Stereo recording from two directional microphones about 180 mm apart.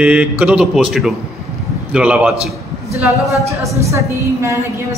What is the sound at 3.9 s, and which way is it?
Speech, 15° right (ahead or behind).